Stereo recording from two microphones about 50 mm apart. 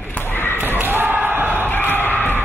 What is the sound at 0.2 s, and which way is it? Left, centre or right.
Basketball bounce, left.